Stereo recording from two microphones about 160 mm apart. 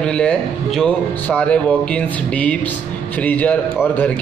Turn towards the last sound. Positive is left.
turn(degrees=10)  # may be behind; listen again after turning